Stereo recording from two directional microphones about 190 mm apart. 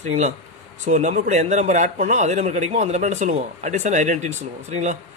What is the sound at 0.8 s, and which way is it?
Speech, 40° right (ahead or behind).